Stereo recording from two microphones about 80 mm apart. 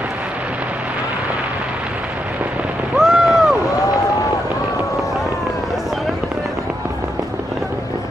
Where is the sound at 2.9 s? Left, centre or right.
Centre.